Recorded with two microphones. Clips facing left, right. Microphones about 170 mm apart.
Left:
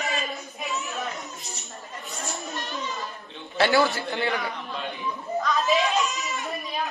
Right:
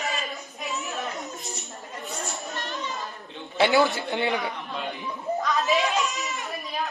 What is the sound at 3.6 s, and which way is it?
Speech, 20° right (ahead or behind).